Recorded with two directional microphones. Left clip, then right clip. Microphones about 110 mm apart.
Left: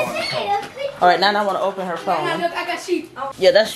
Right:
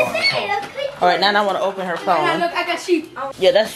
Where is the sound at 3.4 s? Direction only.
15° left (ahead or behind).